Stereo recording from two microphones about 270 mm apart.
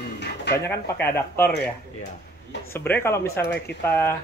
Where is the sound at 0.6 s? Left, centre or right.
Centre.